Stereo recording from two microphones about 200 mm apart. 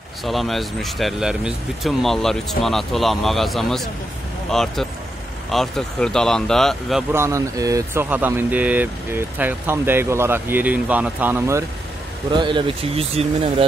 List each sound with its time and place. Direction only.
0.2 s speech: centre (ahead or behind)
7.1 s speech: 15° right (ahead or behind)
12.3 s speech: 25° right (ahead or behind)